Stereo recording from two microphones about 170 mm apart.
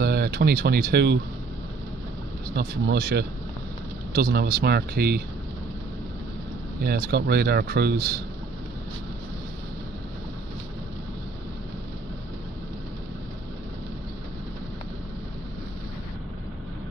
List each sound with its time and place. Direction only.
0.0 s speech: 70° right (ahead or behind)
2.5 s speech: 75° right (ahead or behind)
6.8 s speech: 70° right (ahead or behind)